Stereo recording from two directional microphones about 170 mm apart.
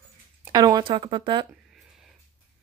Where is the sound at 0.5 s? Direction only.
25° right (ahead or behind).